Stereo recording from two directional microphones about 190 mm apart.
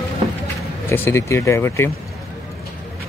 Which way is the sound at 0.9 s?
10° left (ahead or behind).